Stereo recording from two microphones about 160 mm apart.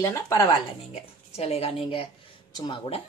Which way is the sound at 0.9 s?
40° left (ahead or behind).